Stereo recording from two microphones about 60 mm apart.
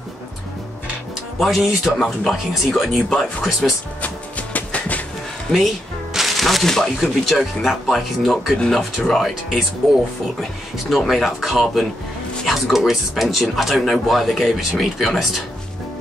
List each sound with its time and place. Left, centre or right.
1.4 s speech: centre
4.0 s music: left
6.1 s speech: centre